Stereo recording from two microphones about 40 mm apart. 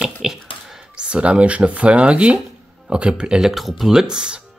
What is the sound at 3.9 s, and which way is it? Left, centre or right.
Speech, centre.